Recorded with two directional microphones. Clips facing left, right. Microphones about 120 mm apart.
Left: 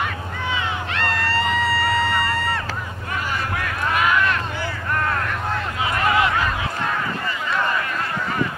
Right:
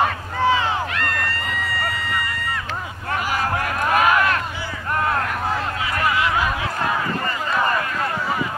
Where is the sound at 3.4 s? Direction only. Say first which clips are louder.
Right 3 dB; 40° right (ahead or behind).